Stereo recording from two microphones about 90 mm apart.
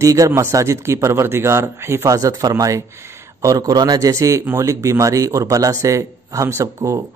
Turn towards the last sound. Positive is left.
turn(degrees=-35)  # may be behind; listen again after turning